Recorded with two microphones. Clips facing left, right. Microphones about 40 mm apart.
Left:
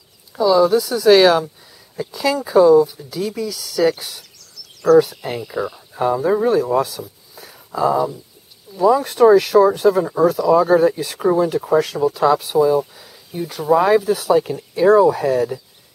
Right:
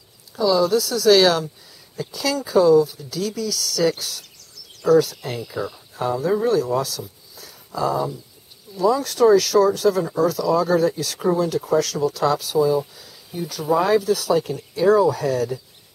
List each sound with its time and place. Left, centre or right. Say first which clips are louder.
0.4 s speech: left 4 dB; centre
7.3 s a sound: left 4 dB; left
8.7 s speech: left 4 dB; left